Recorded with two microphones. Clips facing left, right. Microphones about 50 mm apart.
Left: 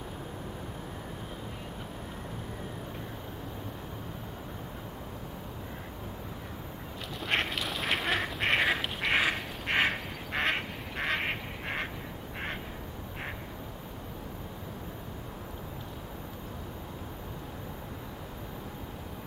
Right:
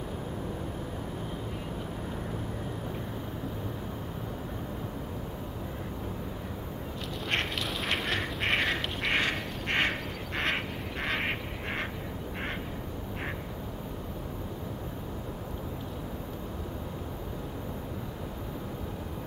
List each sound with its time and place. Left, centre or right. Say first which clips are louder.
7.2 s duck: left 1 dB; centre